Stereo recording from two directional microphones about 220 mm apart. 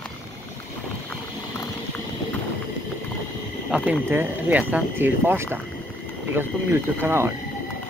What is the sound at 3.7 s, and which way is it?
Speech, 5° right (ahead or behind).